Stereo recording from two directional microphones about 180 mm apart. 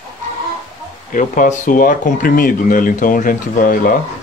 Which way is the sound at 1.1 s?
45° left (ahead or behind).